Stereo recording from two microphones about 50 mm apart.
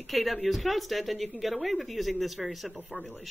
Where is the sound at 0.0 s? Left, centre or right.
Centre.